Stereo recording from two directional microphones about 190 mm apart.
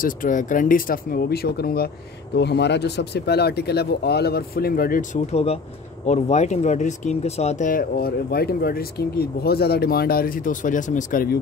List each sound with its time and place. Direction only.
0.0 s speech: 45° left (ahead or behind)
5.2 s speech: 35° left (ahead or behind)